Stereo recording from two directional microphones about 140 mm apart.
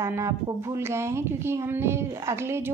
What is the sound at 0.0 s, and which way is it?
Speech, 20° right (ahead or behind).